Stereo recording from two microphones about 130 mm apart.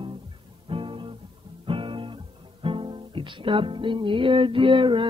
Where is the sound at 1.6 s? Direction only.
40° right (ahead or behind).